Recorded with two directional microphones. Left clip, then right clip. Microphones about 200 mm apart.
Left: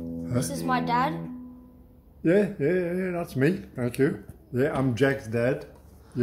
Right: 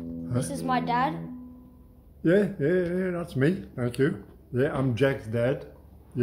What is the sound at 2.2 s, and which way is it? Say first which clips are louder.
Speech: left 1 dB; 10° right (ahead or behind).